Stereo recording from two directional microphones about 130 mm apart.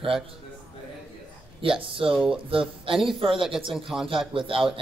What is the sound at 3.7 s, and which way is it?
Speech, centre (ahead or behind).